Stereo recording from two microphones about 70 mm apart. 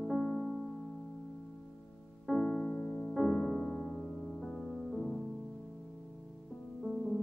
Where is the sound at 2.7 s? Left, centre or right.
Left.